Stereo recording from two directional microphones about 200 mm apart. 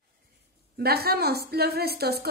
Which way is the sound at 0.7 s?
50° right (ahead or behind).